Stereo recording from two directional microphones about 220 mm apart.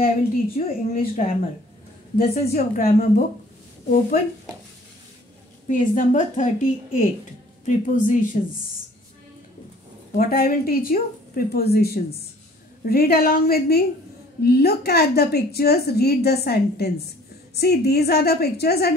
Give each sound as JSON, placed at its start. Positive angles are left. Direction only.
{"t": 0.6, "sound": "a woman's voice", "side_deg": 40}
{"t": 5.7, "sound": "a woman's voice", "side_deg": 35}
{"t": 10.1, "sound": "a woman's voice", "side_deg": 40}